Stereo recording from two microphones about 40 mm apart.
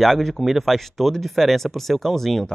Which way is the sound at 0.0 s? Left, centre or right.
Centre.